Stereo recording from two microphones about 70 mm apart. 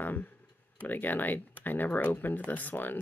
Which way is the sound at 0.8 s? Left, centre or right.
Left.